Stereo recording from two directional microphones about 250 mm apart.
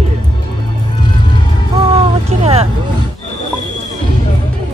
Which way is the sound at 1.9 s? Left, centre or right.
Right.